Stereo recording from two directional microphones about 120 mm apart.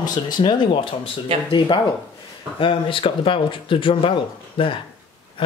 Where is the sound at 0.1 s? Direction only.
35° left (ahead or behind).